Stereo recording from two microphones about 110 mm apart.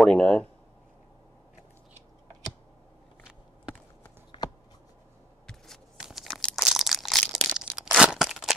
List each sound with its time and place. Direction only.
0.0 s speech: 5° left (ahead or behind)
4.3 s shuffling cards: 45° left (ahead or behind)
5.9 s crunch: 5° right (ahead or behind)